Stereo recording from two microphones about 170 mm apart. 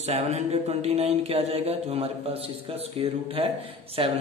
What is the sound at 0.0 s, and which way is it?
Speech, 40° right (ahead or behind).